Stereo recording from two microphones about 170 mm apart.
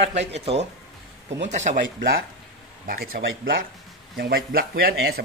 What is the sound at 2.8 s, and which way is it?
Speech, 60° right (ahead or behind).